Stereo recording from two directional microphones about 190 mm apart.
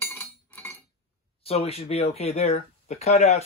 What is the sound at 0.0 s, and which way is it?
Chink, 10° left (ahead or behind).